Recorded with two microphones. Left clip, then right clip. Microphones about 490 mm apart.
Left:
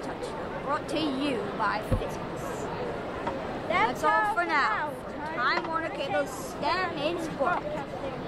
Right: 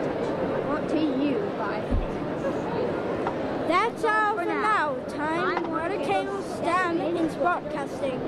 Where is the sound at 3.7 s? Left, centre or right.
Right.